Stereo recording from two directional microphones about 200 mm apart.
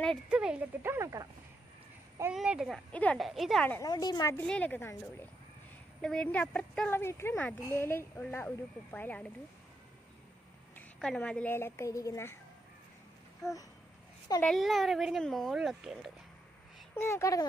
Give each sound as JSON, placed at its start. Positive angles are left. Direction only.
{"t": 0.0, "sound": "speech", "side_deg": 0}
{"t": 2.3, "sound": "a child's voice", "side_deg": -5}
{"t": 3.9, "sound": "a woman's voice", "side_deg": 20}
{"t": 4.5, "sound": "a woman's voice", "side_deg": 5}
{"t": 11.0, "sound": "a woman's voice", "side_deg": 5}
{"t": 14.4, "sound": "a child's voice", "side_deg": 0}
{"t": 16.9, "sound": "a woman's voice", "side_deg": 15}